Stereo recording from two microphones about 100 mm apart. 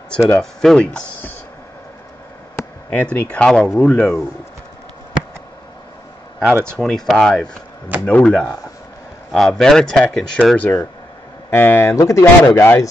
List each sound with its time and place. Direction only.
0.4 s speech: 5° left (ahead or behind)
2.9 s speech: 15° left (ahead or behind)
6.4 s speech: 25° right (ahead or behind)
6.8 s speech: 5° left (ahead or behind); by 12.5 s 30° left (ahead or behind)
12.5 s speech: 20° left (ahead or behind)